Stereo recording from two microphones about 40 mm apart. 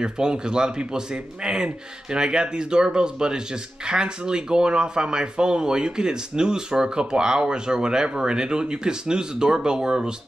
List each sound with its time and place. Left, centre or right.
0.0 s a man's voice: right